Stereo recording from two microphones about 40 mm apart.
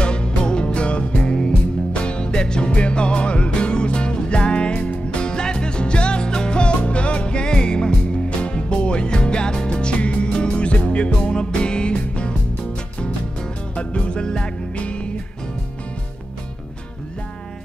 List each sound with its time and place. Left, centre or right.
0.0 s music: left